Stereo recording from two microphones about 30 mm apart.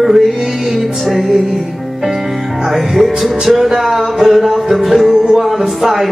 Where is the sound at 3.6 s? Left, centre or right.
Centre.